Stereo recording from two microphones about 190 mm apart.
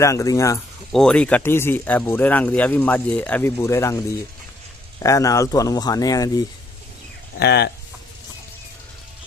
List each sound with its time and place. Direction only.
0.0 s speech: 15° left (ahead or behind)
0.9 s speech: 5° left (ahead or behind)
7.3 s speech: 60° left (ahead or behind)